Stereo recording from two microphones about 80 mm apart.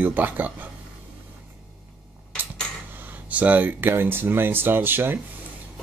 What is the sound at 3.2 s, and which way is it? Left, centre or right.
Speech, centre.